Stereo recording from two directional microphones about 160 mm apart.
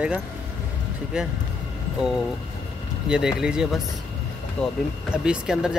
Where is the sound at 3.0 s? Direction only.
5° right (ahead or behind).